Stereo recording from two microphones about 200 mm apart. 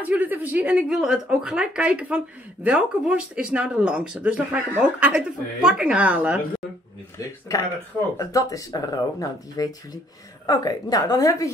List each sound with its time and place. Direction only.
0.0 s speech: 10° right (ahead or behind)
8.2 s a woman's voice: 15° left (ahead or behind)